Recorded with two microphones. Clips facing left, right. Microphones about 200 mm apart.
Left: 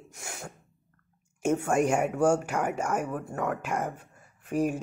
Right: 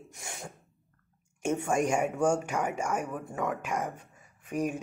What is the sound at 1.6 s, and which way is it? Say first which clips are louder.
Speech: left 1 dB; 5° left (ahead or behind).